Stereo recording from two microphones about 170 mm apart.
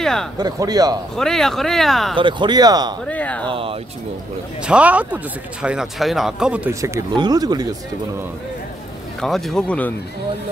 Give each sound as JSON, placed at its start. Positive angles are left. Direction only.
{"t": 0.0, "sound": "speech", "side_deg": 5}
{"t": 0.4, "sound": "speech", "side_deg": -20}
{"t": 1.1, "sound": "speech", "side_deg": 5}
{"t": 2.1, "sound": "speech", "side_deg": -30}
{"t": 3.1, "sound": "speech", "side_deg": 10}
{"t": 3.4, "sound": "speech", "side_deg": -30}
{"t": 4.6, "sound": "speech", "side_deg": -5}
{"t": 6.7, "sound": "speech", "side_deg": -15}
{"t": 9.2, "sound": "speech", "side_deg": 0}